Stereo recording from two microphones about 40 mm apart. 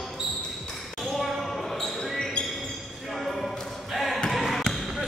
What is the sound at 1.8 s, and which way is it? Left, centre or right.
Basketball bounce, centre.